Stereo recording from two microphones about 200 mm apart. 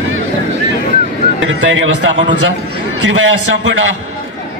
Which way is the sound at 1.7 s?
70° right (ahead or behind).